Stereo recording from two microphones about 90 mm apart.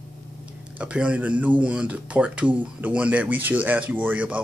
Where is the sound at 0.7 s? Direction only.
10° right (ahead or behind).